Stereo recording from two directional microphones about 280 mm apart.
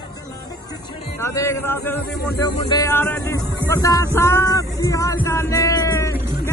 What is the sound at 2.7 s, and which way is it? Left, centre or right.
Speech, centre.